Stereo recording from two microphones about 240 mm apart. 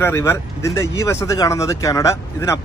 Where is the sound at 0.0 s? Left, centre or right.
Centre.